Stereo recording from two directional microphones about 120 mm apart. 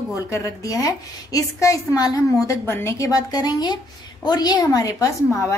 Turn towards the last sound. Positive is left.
turn(degrees=25)  # may be behind; listen again after turning